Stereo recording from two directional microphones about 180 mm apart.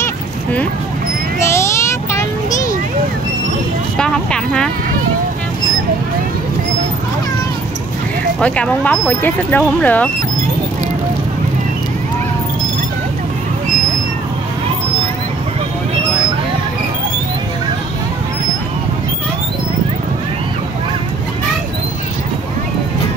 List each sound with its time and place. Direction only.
0.0 s a sound: 10° left (ahead or behind)
4.0 s speech: 5° left (ahead or behind)
8.4 s speech: 5° left (ahead or behind)